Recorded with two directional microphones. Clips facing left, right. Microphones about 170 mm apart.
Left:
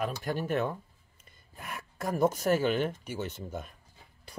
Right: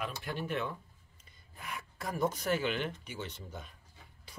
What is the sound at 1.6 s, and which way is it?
Gasp, 50° left (ahead or behind).